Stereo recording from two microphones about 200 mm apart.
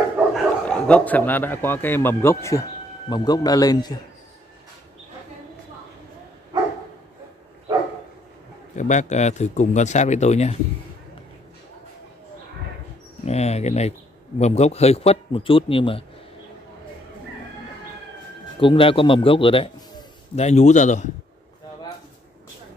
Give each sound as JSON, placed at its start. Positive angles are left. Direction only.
{"t": 0.3, "sound": "a man's voice", "side_deg": 5}
{"t": 8.7, "sound": "speech", "side_deg": 35}
{"t": 13.2, "sound": "speech", "side_deg": 35}
{"t": 18.6, "sound": "a man's voice", "side_deg": 25}
{"t": 20.3, "sound": "speech", "side_deg": 35}